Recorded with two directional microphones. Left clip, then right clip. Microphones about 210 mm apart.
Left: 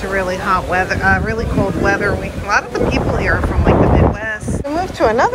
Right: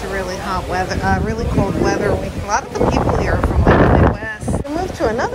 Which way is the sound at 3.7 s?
20° left (ahead or behind).